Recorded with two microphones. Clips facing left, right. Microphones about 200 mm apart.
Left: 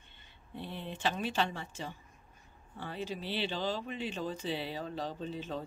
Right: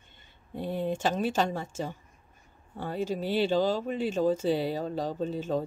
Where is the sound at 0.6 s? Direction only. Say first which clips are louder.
Right 11 dB; 45° right (ahead or behind).